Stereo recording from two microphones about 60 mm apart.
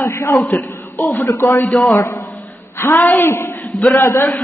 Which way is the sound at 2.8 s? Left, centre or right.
Left.